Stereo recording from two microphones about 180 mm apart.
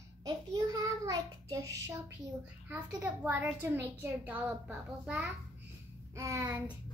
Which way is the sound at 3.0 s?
10° right (ahead or behind).